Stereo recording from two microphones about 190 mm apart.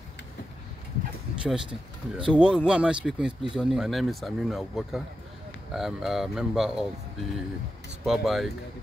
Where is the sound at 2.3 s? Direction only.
5° right (ahead or behind).